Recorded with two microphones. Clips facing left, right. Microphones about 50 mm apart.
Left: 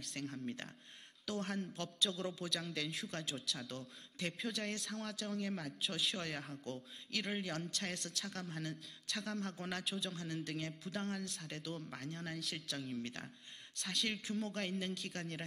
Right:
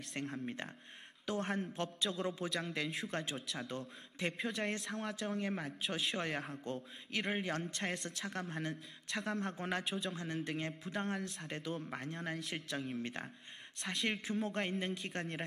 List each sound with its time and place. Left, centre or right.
0.1 s a man's voice: right